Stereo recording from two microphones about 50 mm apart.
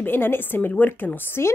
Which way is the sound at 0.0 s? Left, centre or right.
Left.